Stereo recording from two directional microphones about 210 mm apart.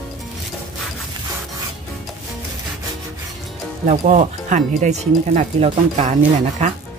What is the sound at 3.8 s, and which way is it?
Speech, 35° right (ahead or behind).